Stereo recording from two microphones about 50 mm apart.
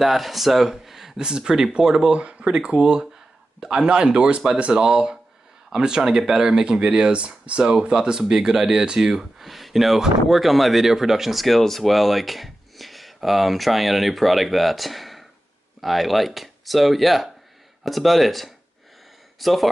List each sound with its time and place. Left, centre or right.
0.0 s speech: centre; by 4.8 s right
4.8 s speech: centre